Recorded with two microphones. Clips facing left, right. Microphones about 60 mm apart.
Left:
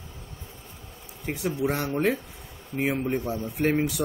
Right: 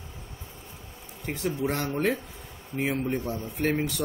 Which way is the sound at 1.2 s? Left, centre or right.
Centre.